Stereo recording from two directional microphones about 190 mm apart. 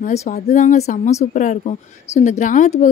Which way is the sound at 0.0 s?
35° left (ahead or behind).